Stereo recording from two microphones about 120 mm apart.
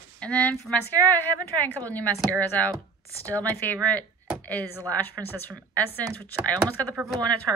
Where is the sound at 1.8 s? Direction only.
10° left (ahead or behind).